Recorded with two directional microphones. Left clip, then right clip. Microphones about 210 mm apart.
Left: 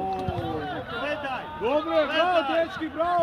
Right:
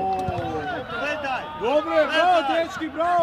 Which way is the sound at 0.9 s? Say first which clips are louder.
Right 3 dB; 40° right (ahead or behind).